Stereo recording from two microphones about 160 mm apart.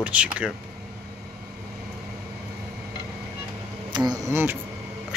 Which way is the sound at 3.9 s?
25° right (ahead or behind).